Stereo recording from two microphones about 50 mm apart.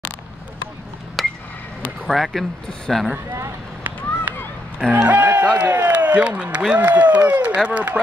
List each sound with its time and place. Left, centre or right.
1.2 s a sound: centre
2.0 s speech: centre
3.8 s run: right
5.0 s a man's voice: right